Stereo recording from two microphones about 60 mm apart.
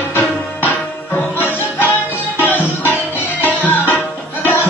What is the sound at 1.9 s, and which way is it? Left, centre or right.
Music, left.